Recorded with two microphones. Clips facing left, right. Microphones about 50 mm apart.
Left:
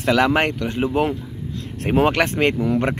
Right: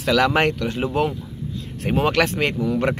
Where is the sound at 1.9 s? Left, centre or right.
Left.